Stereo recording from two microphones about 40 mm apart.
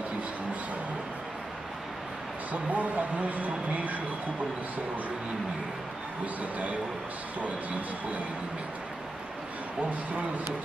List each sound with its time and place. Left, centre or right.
2.5 s speech: right